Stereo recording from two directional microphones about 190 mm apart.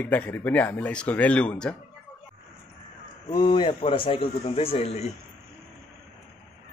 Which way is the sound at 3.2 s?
25° left (ahead or behind).